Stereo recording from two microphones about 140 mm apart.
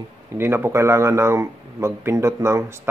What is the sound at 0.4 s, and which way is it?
Speech, 15° right (ahead or behind).